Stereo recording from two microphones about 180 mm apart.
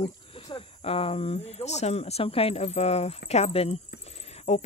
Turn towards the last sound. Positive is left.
turn(degrees=40)  # may be behind; listen again after turning